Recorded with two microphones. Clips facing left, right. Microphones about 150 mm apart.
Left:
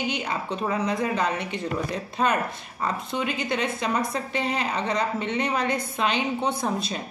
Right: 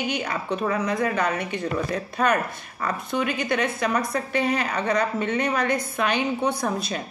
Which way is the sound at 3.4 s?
25° left (ahead or behind).